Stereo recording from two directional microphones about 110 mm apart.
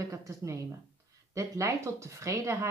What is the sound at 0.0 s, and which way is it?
Speech, 30° right (ahead or behind).